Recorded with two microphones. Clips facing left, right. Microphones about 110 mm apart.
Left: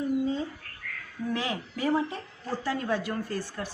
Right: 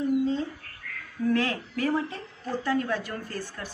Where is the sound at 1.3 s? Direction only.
15° left (ahead or behind).